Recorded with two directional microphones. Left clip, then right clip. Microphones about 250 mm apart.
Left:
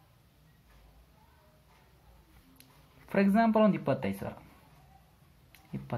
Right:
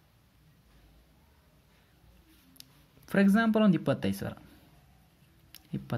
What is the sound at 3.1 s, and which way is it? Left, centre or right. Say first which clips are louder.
Speech: even; right.